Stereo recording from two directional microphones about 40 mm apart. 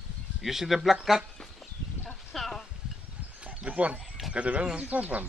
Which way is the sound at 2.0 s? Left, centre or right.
Centre.